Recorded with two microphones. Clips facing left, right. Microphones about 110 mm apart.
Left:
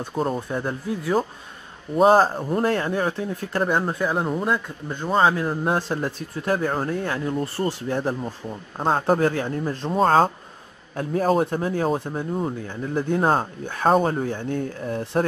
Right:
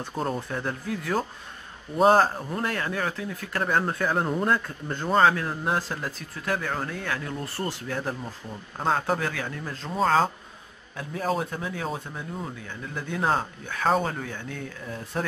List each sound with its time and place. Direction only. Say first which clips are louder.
0.1 s speech: left 4 dB; centre (ahead or behind)
0.5 s speech: left 4 dB; 15° left (ahead or behind)
2.0 s speech: left 3 dB; 5° left (ahead or behind)
2.3 s speech: left 7 dB; 35° left (ahead or behind)
3.8 s speech: left 2 dB; 5° left (ahead or behind)
5.7 s speech: left 5 dB; 25° left (ahead or behind)
10.0 s a man's voice: left 4 dB; 45° left (ahead or behind)